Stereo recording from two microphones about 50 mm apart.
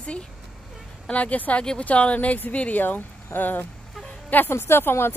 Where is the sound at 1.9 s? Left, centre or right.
Left.